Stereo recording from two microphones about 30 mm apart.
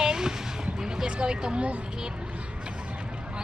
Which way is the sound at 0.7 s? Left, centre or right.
Centre.